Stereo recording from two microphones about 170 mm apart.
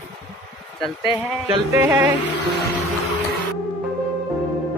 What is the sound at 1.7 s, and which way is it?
Speech, 10° right (ahead or behind).